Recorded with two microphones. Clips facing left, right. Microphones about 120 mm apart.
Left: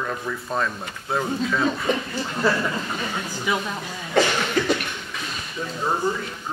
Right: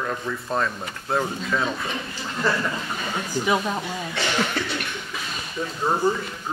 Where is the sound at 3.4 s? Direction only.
20° right (ahead or behind).